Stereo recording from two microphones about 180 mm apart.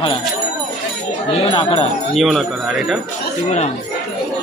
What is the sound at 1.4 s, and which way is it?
Speech, 30° left (ahead or behind).